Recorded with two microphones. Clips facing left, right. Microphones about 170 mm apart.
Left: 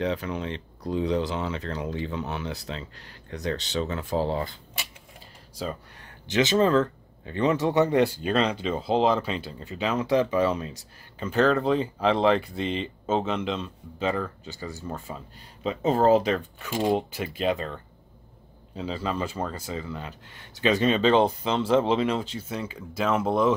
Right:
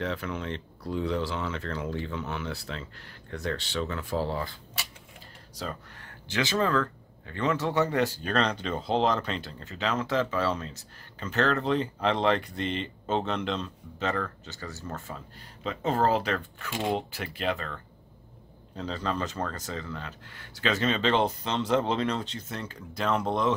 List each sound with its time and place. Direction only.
0.0 s speech: 15° left (ahead or behind)
18.8 s speech: 10° left (ahead or behind)